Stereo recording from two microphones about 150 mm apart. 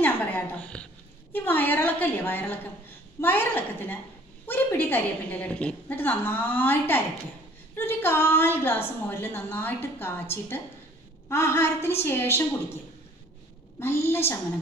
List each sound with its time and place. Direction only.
0.0 s a sound: 10° left (ahead or behind)
1.3 s a woman's voice: 15° left (ahead or behind)
13.7 s a woman's voice: 15° left (ahead or behind)